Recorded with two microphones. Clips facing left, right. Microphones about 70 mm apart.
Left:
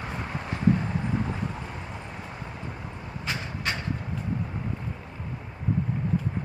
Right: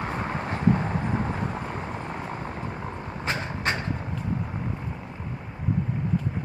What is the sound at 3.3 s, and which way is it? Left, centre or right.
Vehicle, right.